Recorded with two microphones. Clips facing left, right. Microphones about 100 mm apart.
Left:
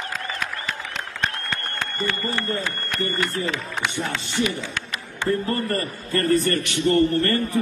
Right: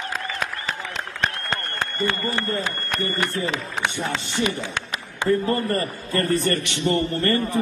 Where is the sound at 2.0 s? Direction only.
20° right (ahead or behind).